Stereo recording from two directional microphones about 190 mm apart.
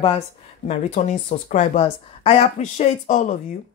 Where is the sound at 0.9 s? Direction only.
40° left (ahead or behind).